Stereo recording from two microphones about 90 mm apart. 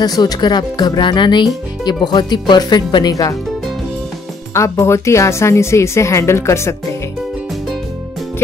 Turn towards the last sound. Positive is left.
turn(degrees=30)  # may be behind; listen again after turning